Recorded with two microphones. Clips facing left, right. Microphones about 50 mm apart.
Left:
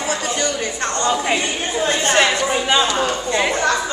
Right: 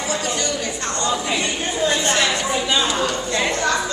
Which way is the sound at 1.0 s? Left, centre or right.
Left.